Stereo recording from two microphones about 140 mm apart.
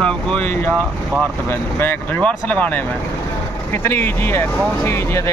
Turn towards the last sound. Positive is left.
turn(degrees=15)  # may be behind; listen again after turning